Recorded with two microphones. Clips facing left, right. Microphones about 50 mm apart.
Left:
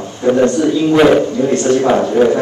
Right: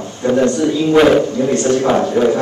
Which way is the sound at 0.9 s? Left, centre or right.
Centre.